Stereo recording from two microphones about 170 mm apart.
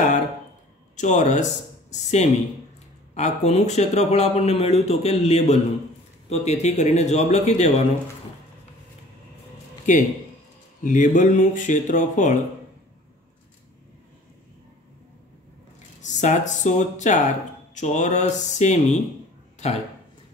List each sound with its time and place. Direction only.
0.9 s speech: 45° left (ahead or behind)
9.9 s speech: 45° left (ahead or behind)
16.0 s speech: 45° left (ahead or behind)